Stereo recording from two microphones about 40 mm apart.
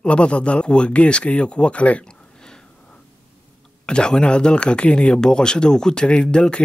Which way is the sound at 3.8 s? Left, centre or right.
Left.